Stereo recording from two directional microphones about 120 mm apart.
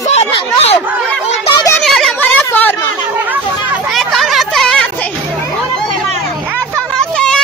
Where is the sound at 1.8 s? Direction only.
5° left (ahead or behind).